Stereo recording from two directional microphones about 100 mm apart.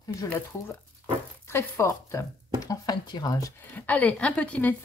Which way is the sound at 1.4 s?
25° left (ahead or behind).